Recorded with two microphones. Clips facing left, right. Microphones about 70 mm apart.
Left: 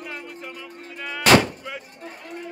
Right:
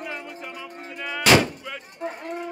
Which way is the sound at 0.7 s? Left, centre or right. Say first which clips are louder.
Right 2 dB; right.